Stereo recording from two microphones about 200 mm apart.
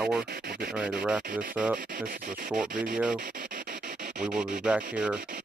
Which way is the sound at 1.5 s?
5° right (ahead or behind).